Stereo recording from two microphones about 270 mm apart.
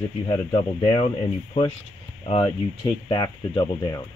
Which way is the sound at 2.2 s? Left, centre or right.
Centre.